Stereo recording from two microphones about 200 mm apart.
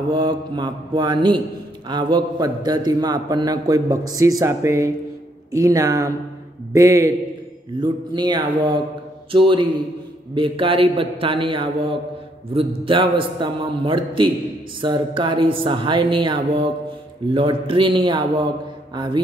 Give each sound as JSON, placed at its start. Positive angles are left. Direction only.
{"t": 0.1, "sound": "a man's voice", "side_deg": -25}